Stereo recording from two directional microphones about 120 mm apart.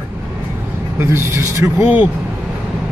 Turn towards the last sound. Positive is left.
turn(degrees=-20)  # may be behind; listen again after turning